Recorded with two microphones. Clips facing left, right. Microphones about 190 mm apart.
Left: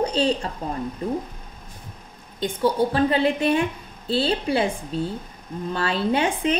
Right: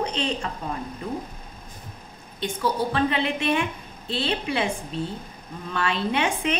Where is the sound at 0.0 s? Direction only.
35° left (ahead or behind).